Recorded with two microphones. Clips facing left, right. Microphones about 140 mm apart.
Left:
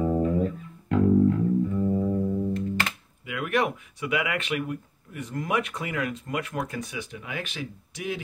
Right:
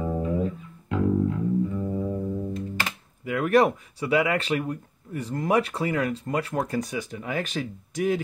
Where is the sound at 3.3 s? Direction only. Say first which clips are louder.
Right 6 dB; 40° right (ahead or behind).